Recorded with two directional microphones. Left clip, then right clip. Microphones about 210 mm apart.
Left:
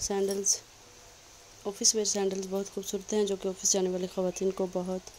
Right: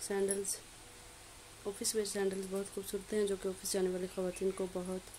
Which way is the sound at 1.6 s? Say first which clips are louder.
Left 9 dB; 20° left (ahead or behind).